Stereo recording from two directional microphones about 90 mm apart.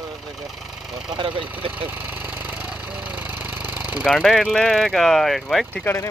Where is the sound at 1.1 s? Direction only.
80° right.